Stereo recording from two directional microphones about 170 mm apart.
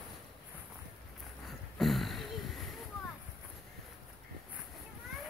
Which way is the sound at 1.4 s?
Centre (ahead or behind).